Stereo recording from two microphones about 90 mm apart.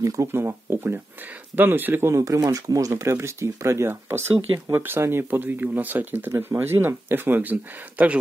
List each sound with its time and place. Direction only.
0.0 s speech: 40° right (ahead or behind)
0.3 s speech: 25° right (ahead or behind)